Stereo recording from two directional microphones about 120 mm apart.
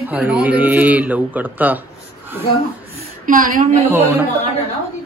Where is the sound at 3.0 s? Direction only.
90° right.